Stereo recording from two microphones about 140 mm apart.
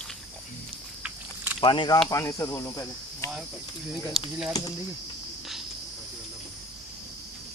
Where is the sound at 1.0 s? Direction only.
15° right (ahead or behind).